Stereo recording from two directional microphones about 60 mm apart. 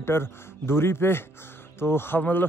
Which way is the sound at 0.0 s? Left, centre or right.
Left.